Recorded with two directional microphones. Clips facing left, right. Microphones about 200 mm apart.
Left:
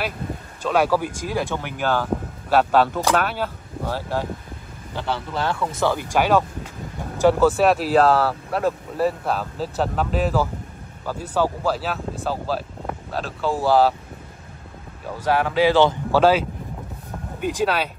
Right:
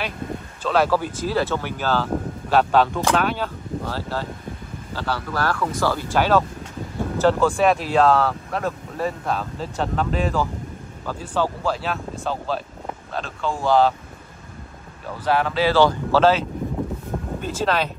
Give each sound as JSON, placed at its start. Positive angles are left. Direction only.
{"t": 0.6, "sound": "speech", "side_deg": 10}
{"t": 15.0, "sound": "speech", "side_deg": 10}